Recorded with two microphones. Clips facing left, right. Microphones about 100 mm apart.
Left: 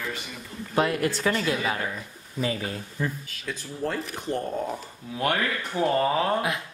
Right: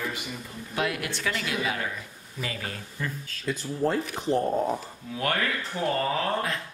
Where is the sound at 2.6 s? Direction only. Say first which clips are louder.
Left 4 dB; 15° left (ahead or behind).